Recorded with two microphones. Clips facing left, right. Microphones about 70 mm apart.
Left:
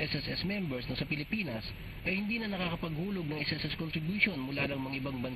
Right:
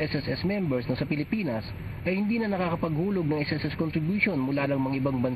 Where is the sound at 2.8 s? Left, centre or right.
Right.